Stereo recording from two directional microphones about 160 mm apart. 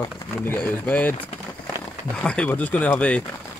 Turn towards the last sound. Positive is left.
turn(degrees=10)  # may be behind; listen again after turning